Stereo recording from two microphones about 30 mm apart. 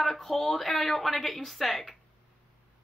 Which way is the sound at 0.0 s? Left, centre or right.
Centre.